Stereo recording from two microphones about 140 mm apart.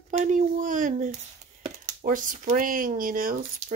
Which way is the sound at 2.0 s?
70° right (ahead or behind).